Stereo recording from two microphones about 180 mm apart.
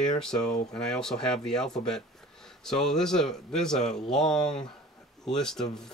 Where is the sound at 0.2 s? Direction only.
5° left (ahead or behind).